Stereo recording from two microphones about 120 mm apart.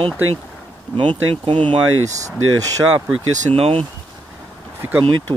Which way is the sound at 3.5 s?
55° right (ahead or behind).